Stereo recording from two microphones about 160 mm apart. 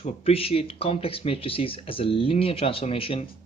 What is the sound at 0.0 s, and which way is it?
Speech, 40° left (ahead or behind).